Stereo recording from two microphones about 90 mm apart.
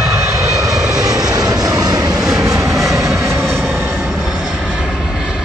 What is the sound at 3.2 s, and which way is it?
Vehicle, 30° right (ahead or behind).